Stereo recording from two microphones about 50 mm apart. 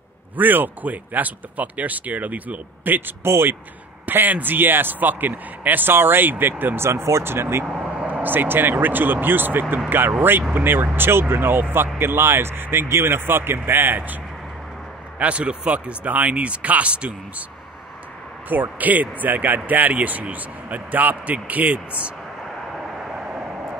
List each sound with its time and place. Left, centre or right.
0.4 s speech: right
3.3 s speech: right
4.0 s speech: right
6.9 s speech: right
7.2 s speech: right
7.6 s vehicle: centre
8.1 s speech: right
15.1 s speech: right
18.5 s speech: right